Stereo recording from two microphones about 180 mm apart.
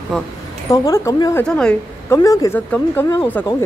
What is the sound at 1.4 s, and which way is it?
Speech, 5° left (ahead or behind).